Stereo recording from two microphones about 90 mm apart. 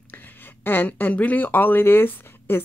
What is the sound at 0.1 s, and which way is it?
Speech, 20° left (ahead or behind).